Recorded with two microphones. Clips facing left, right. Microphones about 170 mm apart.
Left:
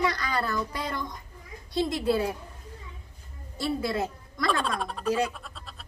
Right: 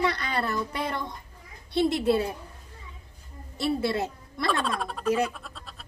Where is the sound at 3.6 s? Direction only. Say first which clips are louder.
Right 2 dB; 25° right (ahead or behind).